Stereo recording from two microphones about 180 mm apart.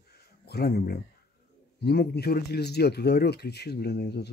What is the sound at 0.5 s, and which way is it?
Speech, 60° left (ahead or behind).